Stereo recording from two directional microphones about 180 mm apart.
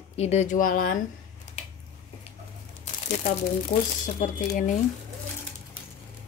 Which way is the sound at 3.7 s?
45° left (ahead or behind).